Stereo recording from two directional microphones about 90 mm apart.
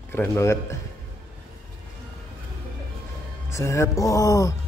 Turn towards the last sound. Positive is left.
turn(degrees=40)  # may be behind; listen again after turning